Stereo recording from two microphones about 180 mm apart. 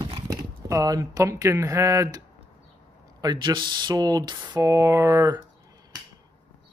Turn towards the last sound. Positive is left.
turn(degrees=-20)  # may be behind; listen again after turning